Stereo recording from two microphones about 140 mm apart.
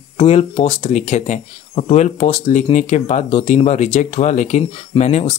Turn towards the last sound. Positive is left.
turn(degrees=50)  # may be behind; listen again after turning